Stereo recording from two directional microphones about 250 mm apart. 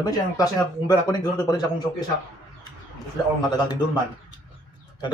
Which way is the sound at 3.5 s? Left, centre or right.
Centre.